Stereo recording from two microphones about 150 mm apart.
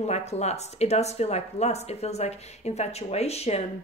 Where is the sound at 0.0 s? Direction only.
45° left (ahead or behind).